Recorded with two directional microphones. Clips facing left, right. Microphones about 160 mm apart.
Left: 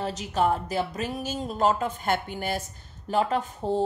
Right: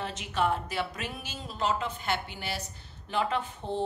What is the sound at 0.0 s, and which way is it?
Speech, 40° left (ahead or behind).